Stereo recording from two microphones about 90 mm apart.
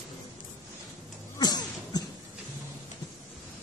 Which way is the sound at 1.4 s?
50° left (ahead or behind).